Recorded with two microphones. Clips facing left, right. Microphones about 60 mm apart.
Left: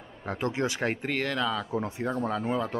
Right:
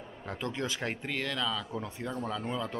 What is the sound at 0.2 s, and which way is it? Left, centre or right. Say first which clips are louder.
Speech: left 6 dB; left.